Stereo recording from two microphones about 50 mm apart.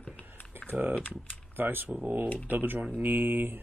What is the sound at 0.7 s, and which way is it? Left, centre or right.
Typing, centre.